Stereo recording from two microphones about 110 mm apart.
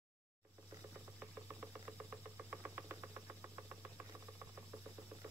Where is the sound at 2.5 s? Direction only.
20° right (ahead or behind).